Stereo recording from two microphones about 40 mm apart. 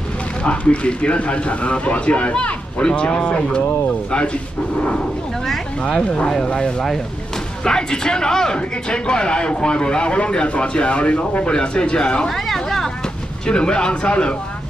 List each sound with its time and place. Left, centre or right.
0.4 s speech: left
5.5 s speech: centre
6.4 s a man's voice: left
12.3 s a sound: centre
13.5 s speech: left